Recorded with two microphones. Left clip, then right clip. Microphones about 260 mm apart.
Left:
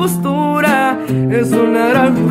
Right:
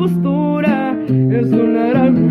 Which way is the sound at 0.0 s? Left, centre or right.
Left.